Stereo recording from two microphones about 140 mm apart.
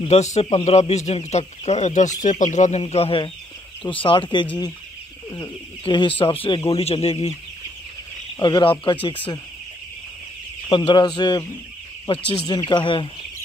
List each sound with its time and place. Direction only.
0.1 s speech: 50° left (ahead or behind)
2.8 s speech: 45° left (ahead or behind)
8.4 s speech: 30° left (ahead or behind)
10.9 s speech: 30° left (ahead or behind)